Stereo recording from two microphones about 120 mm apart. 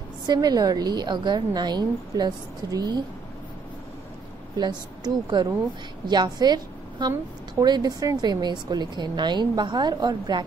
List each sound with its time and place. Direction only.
0.3 s speech: 35° right (ahead or behind)
4.6 s a woman's voice: 35° right (ahead or behind)